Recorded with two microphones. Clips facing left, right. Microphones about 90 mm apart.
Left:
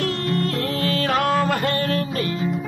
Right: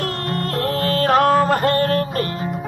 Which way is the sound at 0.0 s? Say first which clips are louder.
Left 1 dB; 45° right (ahead or behind).